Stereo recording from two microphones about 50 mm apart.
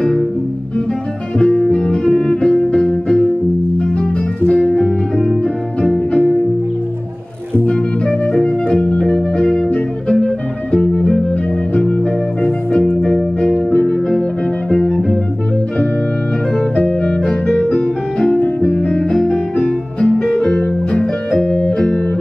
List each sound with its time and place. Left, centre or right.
1.4 s music: centre
4.5 s music: left
7.6 s music: centre
12.4 s organ: centre
13.7 s music: centre
16.5 s music: centre
18.4 s piano: left
18.9 s music: centre